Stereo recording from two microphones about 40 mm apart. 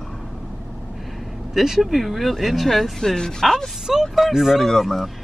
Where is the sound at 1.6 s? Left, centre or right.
Centre.